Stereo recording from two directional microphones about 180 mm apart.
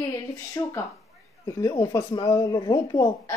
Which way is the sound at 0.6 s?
15° left (ahead or behind).